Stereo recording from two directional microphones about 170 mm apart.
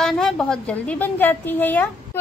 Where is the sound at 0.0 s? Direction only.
5° left (ahead or behind).